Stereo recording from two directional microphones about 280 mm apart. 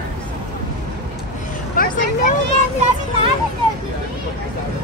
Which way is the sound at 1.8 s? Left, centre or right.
Left.